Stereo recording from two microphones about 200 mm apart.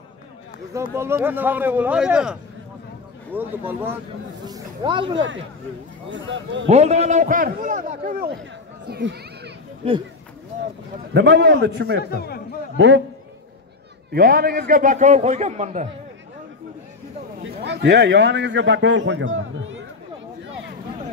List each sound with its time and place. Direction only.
0.9 s speech: 10° right (ahead or behind)
3.3 s speech: 10° right (ahead or behind)
4.5 s speech: 25° right (ahead or behind)
6.0 s speech: 65° right (ahead or behind)
6.7 s a man's voice: 35° right (ahead or behind)
8.9 s children playing: 55° right (ahead or behind)
9.8 s speech: 30° right (ahead or behind)
11.1 s a man's voice: 60° right (ahead or behind)
12.0 s a man's voice: 50° left (ahead or behind)
12.7 s a man's voice: 65° right (ahead or behind)
14.1 s a man's voice: 50° right (ahead or behind)
17.4 s a man's voice: 60° right (ahead or behind)